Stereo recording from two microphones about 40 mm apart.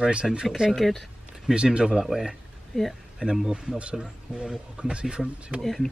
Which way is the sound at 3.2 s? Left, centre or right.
Right.